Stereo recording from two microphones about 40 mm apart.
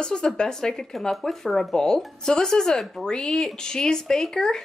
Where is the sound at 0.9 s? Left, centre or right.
Centre.